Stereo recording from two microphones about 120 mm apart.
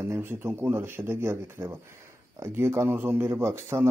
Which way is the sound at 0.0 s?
20° right (ahead or behind).